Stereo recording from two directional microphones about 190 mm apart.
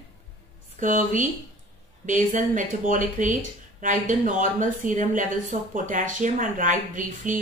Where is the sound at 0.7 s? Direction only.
40° right (ahead or behind).